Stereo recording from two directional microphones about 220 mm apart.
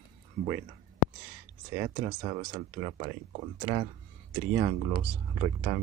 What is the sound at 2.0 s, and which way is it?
Speech, 25° right (ahead or behind).